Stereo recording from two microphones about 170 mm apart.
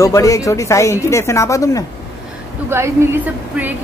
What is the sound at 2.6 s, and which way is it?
Speech, 15° right (ahead or behind).